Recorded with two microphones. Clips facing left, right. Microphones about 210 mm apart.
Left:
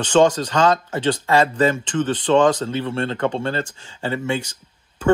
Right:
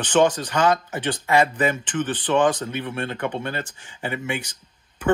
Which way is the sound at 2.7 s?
25° left (ahead or behind).